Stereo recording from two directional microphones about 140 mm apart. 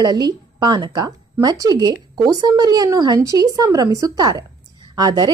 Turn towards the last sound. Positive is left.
turn(degrees=-30)  # may be behind; listen again after turning